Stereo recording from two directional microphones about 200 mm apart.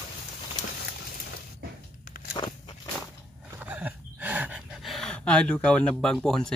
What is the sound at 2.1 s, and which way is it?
Walk, 45° left (ahead or behind).